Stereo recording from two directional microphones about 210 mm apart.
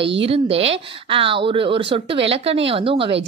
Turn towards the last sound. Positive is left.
turn(degrees=-25)  # may be behind; listen again after turning